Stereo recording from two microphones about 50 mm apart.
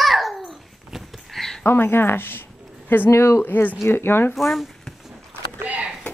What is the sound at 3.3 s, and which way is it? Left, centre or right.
Speech, left.